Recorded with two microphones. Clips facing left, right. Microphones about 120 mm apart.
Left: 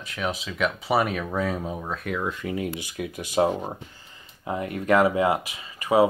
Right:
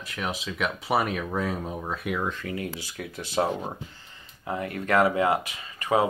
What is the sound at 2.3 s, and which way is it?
Speech, 20° left (ahead or behind).